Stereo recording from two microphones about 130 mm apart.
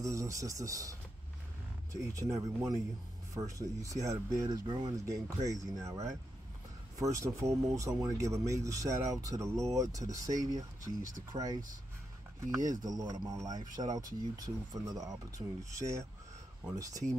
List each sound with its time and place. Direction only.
0.0 s speech: 25° right (ahead or behind)
7.0 s speech: 25° right (ahead or behind)